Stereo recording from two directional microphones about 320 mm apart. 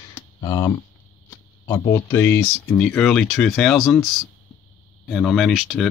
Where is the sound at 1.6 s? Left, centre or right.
Centre.